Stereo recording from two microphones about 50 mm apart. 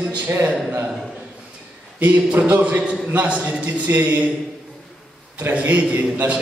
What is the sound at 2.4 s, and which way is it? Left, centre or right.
A man's voice, right.